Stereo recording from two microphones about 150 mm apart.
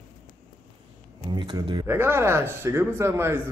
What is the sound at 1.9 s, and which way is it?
Speech, 15° right (ahead or behind).